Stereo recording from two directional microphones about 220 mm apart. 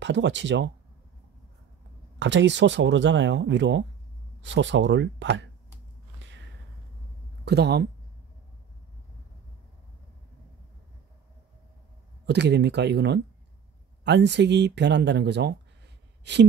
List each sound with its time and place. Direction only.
0.0 s speech: 55° right (ahead or behind)
2.1 s speech: 55° right (ahead or behind)
7.4 s speech: 50° right (ahead or behind)
12.3 s speech: 50° right (ahead or behind)